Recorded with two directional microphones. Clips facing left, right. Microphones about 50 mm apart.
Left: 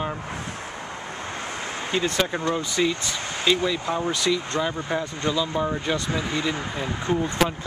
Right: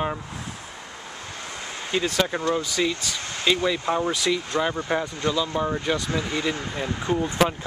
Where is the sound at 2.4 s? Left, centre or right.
Centre.